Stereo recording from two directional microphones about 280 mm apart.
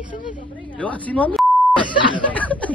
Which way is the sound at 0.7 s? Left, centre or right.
Centre.